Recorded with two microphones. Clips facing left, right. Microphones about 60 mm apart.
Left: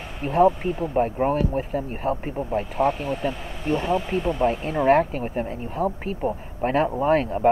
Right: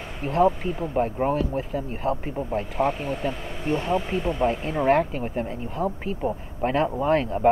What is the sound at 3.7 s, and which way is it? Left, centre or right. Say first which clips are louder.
Speech: left 2 dB; left.